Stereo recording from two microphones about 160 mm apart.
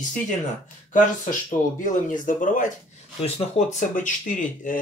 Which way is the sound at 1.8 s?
55° left (ahead or behind).